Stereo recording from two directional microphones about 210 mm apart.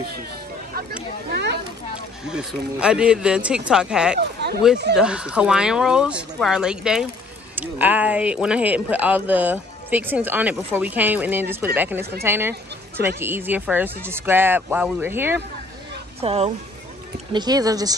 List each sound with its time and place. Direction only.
1.3 s speech: 50° right (ahead or behind)
2.2 s speech: 5° right (ahead or behind)
4.2 s speech: 50° right (ahead or behind)
4.9 s speech: 5° right (ahead or behind)
16.2 s speech: 30° right (ahead or behind)